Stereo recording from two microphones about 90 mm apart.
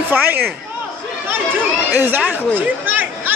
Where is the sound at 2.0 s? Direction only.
20° right (ahead or behind).